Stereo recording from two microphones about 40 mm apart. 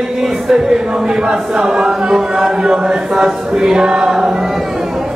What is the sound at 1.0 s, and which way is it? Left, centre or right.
Chant, centre.